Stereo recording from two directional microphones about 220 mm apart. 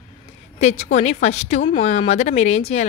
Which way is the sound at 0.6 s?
30° left (ahead or behind).